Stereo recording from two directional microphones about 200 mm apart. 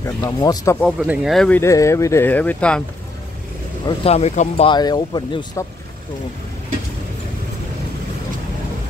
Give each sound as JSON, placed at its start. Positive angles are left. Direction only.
{"t": 0.0, "sound": "speech", "side_deg": 15}
{"t": 0.7, "sound": "speech", "side_deg": 0}
{"t": 1.6, "sound": "speech", "side_deg": 15}
{"t": 3.8, "sound": "speech", "side_deg": 30}